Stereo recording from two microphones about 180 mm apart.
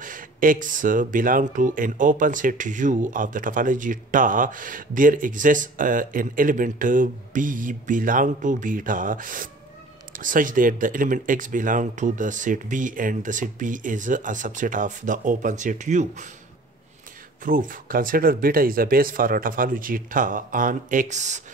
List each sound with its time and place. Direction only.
0.0 s speech: 50° right (ahead or behind)
17.5 s speech: 50° right (ahead or behind)